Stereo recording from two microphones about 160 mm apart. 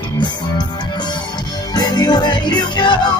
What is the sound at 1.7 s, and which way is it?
Music, 25° left (ahead or behind).